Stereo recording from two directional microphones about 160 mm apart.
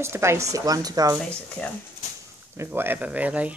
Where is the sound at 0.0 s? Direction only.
15° right (ahead or behind).